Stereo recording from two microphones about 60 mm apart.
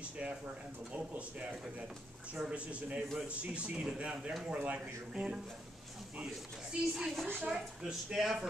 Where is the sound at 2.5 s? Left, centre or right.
Right.